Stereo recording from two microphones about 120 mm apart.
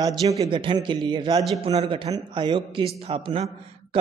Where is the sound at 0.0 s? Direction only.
30° right (ahead or behind).